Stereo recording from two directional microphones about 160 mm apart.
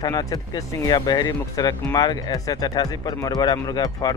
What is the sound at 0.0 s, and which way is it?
Speech, 25° left (ahead or behind).